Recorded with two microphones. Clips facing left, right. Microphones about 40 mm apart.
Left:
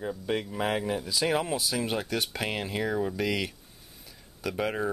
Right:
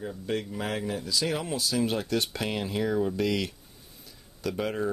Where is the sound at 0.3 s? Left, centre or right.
Centre.